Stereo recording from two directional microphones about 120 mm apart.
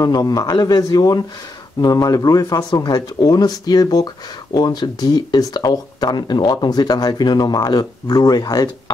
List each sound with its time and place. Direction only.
0.0 s speech: 35° left (ahead or behind)